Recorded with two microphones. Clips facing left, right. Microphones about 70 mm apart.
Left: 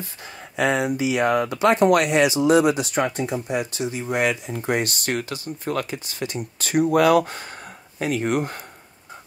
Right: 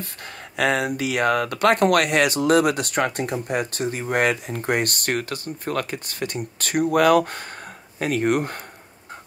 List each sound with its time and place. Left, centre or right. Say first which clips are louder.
0.0 s speech: right 1 dB; right